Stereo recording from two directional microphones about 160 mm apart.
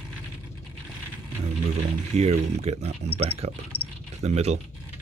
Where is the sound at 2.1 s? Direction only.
40° right (ahead or behind).